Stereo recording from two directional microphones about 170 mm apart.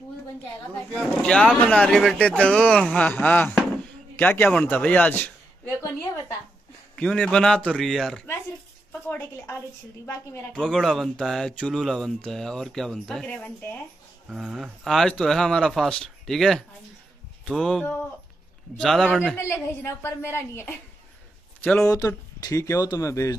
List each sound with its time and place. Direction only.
1.2 s a man's voice: 5° left (ahead or behind)
7.0 s speech: 5° left (ahead or behind)
9.1 s a woman's voice: 10° left (ahead or behind)
19.3 s a woman's voice: 15° left (ahead or behind)
21.9 s speech: 20° left (ahead or behind)